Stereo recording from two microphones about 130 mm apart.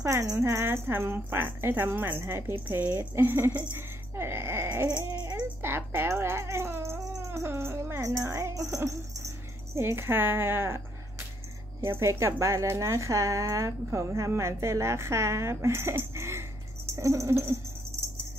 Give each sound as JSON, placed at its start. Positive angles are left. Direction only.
{"t": 0.0, "sound": "speech", "side_deg": -25}
{"t": 4.8, "sound": "baby cry", "side_deg": -30}
{"t": 5.3, "sound": "speech", "side_deg": -15}
{"t": 11.8, "sound": "speech", "side_deg": -20}